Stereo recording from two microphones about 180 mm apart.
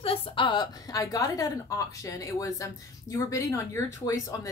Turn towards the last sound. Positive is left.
turn(degrees=20)  # may be behind; listen again after turning